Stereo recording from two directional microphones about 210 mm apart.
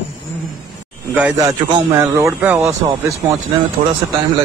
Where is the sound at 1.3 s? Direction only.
15° right (ahead or behind).